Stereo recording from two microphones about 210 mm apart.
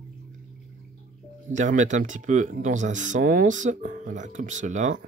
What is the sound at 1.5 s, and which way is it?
Speech, 35° right (ahead or behind).